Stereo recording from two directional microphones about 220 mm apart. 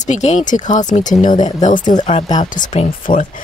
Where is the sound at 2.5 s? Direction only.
35° left (ahead or behind).